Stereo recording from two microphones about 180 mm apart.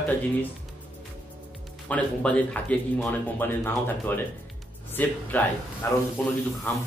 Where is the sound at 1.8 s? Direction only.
5° left (ahead or behind).